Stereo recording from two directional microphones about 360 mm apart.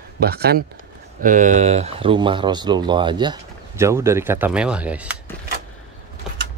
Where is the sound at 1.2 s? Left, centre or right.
Right; by 5.1 s centre.